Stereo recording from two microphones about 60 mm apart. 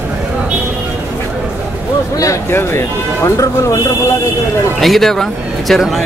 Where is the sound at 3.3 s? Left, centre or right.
Left.